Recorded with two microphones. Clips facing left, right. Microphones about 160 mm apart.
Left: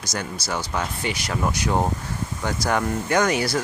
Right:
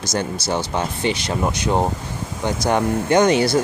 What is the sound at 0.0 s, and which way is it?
Speech, 25° right (ahead or behind).